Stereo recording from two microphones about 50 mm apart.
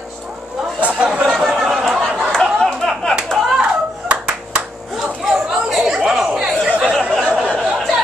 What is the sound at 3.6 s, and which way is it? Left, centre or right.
Hands, right.